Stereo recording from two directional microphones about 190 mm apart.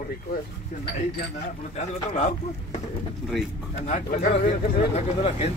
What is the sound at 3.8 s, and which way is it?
Speech, 40° left (ahead or behind).